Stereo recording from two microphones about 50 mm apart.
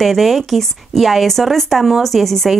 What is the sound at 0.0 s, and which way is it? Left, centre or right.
Speech, centre.